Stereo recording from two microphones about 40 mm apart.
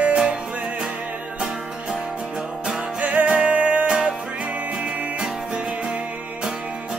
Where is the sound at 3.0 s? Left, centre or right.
Right.